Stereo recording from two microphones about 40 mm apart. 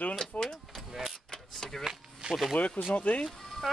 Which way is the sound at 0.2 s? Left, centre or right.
Centre.